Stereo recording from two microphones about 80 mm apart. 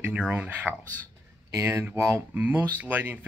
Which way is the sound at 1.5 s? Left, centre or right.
Right.